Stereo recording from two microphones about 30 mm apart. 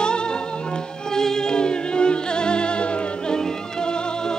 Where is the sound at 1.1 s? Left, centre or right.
Centre; by 3.3 s left.